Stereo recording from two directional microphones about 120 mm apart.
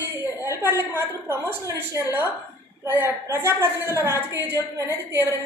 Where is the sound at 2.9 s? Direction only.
20° right (ahead or behind).